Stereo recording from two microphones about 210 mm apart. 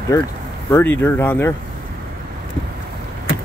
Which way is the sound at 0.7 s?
10° left (ahead or behind).